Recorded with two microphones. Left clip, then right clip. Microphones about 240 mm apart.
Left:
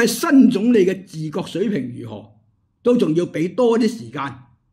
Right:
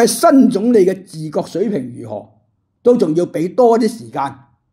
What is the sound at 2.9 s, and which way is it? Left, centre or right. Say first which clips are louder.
Speech: right 3 dB; centre.